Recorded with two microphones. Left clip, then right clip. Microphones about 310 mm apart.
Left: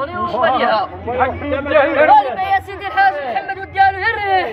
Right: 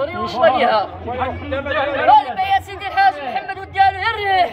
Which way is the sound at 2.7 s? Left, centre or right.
Centre.